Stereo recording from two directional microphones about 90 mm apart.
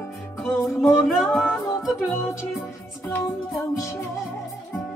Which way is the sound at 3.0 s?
30° left (ahead or behind).